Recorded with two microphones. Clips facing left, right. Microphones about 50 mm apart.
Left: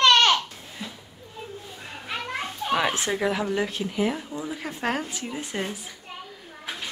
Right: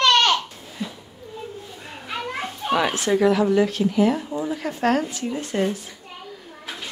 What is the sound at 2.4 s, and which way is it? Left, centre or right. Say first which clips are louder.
Children playing: right 3 dB; centre.